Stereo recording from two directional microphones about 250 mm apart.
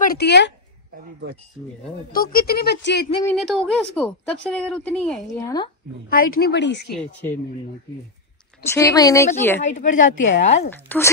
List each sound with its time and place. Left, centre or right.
0.0 s speech: left
2.3 s speech: left
3.3 s speech: centre
6.0 s a woman's voice: left
6.9 s speech: centre
8.6 s a woman's voice: centre
9.6 s speech: left
10.1 s a woman's voice: left
10.7 s a woman's voice: centre